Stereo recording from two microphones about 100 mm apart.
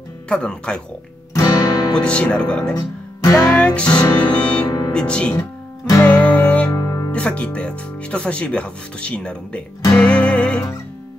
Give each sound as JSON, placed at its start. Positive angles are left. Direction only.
{"t": 0.3, "sound": "speech", "side_deg": 10}
{"t": 1.3, "sound": "music", "side_deg": 35}
{"t": 2.0, "sound": "speech", "side_deg": 10}
{"t": 2.7, "sound": "speech", "side_deg": 35}
{"t": 3.5, "sound": "music", "side_deg": 10}
{"t": 4.6, "sound": "music", "side_deg": 40}
{"t": 4.9, "sound": "speech", "side_deg": 10}
{"t": 6.0, "sound": "music", "side_deg": 15}
{"t": 6.7, "sound": "guitar", "side_deg": 30}
{"t": 7.1, "sound": "speech", "side_deg": 10}
{"t": 9.9, "sound": "music", "side_deg": 10}